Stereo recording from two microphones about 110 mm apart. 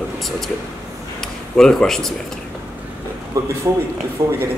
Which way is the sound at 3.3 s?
30° right (ahead or behind).